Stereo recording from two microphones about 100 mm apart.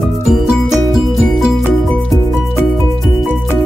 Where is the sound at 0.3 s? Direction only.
5° right (ahead or behind).